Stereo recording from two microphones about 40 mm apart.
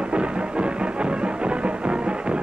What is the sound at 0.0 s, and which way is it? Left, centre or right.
Music, right.